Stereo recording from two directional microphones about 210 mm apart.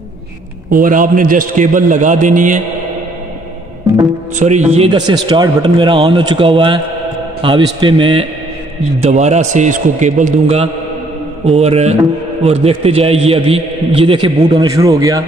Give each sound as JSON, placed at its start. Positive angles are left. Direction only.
{"t": 0.7, "sound": "a man's voice", "side_deg": -40}
{"t": 4.4, "sound": "a man's voice", "side_deg": -35}